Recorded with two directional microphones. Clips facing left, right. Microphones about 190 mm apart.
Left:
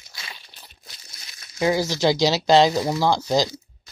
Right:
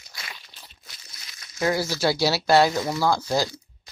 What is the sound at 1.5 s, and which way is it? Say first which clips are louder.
Speech: left 3 dB; 20° left (ahead or behind).